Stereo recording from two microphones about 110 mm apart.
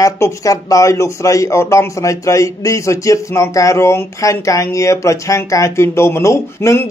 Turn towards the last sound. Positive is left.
turn(degrees=25)  # may be behind; listen again after turning